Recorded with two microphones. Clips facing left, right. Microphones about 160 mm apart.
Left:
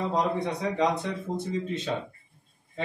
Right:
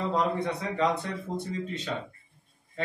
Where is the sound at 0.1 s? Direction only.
15° left (ahead or behind).